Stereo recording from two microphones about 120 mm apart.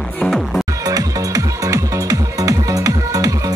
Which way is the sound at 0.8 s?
30° right (ahead or behind).